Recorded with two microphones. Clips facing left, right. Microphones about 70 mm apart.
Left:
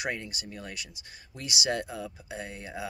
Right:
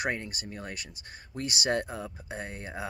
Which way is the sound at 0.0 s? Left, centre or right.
Right.